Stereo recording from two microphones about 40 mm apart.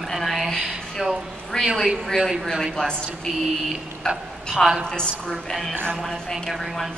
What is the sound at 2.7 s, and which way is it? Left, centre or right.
A man's voice, centre.